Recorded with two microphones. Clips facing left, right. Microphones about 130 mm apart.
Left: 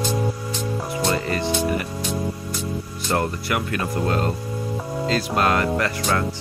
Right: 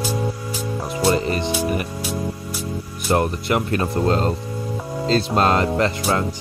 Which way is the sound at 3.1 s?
20° right (ahead or behind).